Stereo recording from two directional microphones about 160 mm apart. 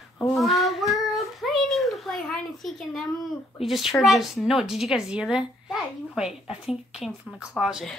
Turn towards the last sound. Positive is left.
turn(degrees=-5)  # may be behind; listen again after turning